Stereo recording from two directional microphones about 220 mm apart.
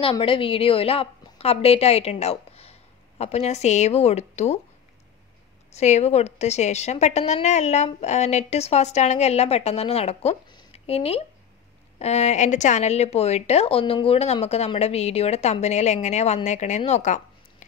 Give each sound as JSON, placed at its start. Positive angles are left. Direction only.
{"t": 0.0, "sound": "a woman's voice", "side_deg": 25}
{"t": 5.7, "sound": "a woman's voice", "side_deg": 30}